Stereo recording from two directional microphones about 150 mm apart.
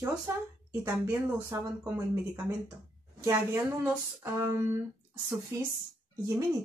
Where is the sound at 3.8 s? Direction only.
15° right (ahead or behind).